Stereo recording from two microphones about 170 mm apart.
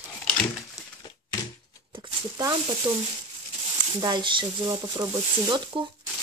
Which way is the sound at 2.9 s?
15° right (ahead or behind).